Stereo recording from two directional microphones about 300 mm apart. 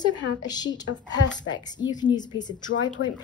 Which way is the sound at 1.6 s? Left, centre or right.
Centre.